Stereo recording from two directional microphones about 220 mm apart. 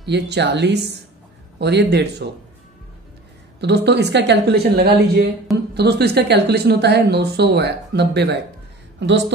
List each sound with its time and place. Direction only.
0.0 s speech: 50° right (ahead or behind)
3.6 s speech: 50° right (ahead or behind)